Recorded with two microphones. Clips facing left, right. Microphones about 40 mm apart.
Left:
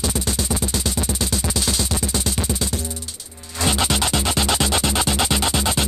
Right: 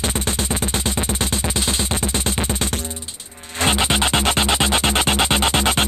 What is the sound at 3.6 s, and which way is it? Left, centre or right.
Music, right.